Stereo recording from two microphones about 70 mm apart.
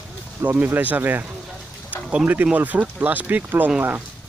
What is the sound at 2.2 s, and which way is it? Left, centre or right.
Speech, right.